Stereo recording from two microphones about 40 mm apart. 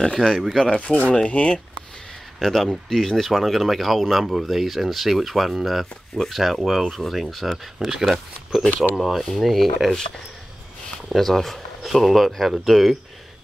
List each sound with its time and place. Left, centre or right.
0.0 s speech: centre
0.3 s speech: centre
0.7 s speech: left
2.4 s speech: centre
11.1 s speech: centre